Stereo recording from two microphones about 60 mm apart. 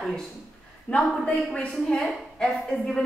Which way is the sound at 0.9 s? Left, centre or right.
Left.